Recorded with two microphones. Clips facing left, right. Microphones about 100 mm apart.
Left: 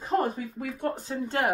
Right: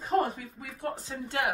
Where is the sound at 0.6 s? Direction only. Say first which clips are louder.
Left 5 dB; 60° left (ahead or behind).